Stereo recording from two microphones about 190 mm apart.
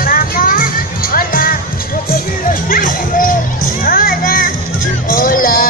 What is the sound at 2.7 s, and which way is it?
Music, 45° left (ahead or behind).